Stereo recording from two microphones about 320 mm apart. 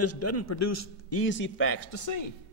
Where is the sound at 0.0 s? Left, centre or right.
Left.